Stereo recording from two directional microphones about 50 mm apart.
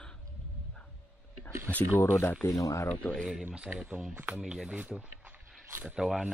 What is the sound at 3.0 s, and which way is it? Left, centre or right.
Speech, left.